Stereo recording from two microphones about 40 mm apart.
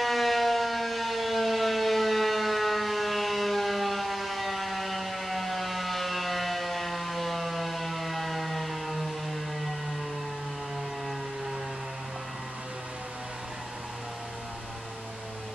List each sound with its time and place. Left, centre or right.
0.0 s civil defense siren: centre